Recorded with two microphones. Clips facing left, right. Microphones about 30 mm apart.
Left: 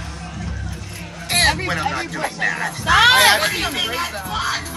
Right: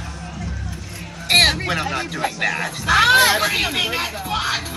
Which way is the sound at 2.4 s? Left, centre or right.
Centre.